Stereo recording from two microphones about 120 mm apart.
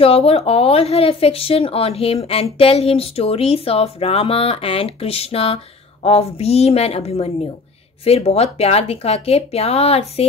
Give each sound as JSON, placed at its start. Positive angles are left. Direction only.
{"t": 0.0, "sound": "speech", "side_deg": 55}